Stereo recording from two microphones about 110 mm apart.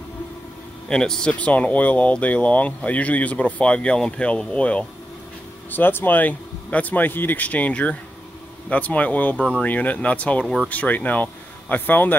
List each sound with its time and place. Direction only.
0.8 s speech: 5° left (ahead or behind)
10.4 s speech: centre (ahead or behind)
10.7 s speech: 15° left (ahead or behind)